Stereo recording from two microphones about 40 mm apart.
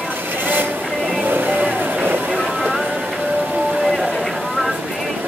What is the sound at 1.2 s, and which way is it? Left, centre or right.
Vehicle, right.